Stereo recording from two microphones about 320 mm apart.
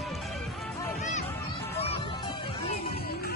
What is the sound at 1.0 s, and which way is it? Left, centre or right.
Music, left.